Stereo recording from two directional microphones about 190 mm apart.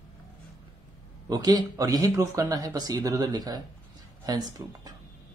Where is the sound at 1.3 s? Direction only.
20° right (ahead or behind).